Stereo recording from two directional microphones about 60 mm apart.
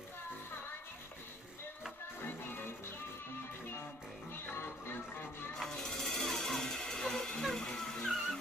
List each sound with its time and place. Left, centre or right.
4.6 s music: left
5.6 s music: centre